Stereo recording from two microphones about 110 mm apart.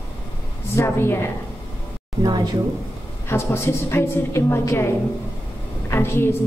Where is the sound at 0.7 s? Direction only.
25° left (ahead or behind).